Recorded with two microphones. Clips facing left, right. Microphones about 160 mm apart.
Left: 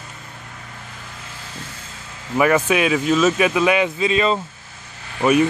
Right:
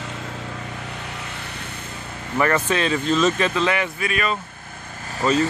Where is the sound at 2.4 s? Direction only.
10° left (ahead or behind).